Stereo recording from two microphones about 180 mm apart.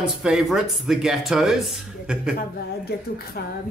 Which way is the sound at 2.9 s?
65° left (ahead or behind).